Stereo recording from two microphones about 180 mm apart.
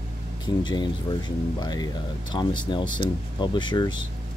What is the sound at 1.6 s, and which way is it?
Speech, 25° left (ahead or behind).